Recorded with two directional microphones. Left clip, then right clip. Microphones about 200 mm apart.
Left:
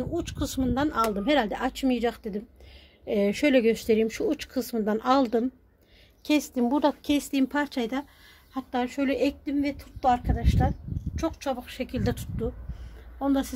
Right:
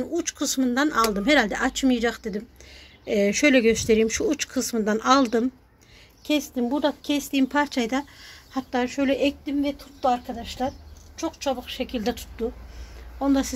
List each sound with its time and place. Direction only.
0.0 s speech: 5° left (ahead or behind)
6.2 s a woman's voice: 25° left (ahead or behind)
7.2 s speech: 10° left (ahead or behind); by 8.8 s 5° right (ahead or behind)
8.8 s a woman's voice: 10° left (ahead or behind)